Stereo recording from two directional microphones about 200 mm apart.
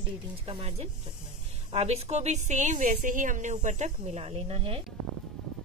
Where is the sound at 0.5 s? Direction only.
30° right (ahead or behind).